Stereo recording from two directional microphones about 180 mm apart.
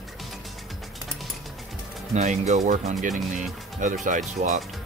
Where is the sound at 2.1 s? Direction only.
40° right (ahead or behind).